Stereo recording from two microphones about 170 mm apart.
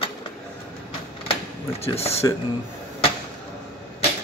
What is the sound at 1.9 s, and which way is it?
Speech, 35° left (ahead or behind).